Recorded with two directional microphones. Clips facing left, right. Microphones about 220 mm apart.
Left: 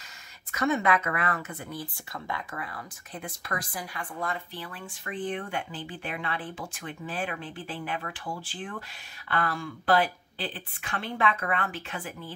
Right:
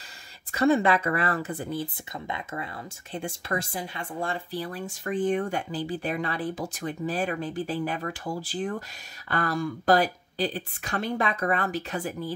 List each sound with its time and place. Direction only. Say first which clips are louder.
0.5 s speech: right 4 dB; 30° right (ahead or behind)